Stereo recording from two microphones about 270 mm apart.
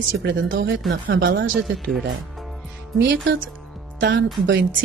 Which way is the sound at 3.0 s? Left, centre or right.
Right.